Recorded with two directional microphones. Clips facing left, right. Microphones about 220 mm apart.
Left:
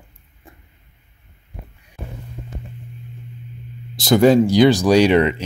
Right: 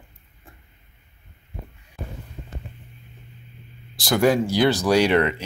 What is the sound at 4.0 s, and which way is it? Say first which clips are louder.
Speech: left 6 dB; 25° left (ahead or behind).